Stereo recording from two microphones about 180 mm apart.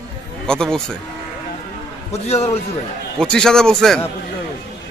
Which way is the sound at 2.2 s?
35° left (ahead or behind).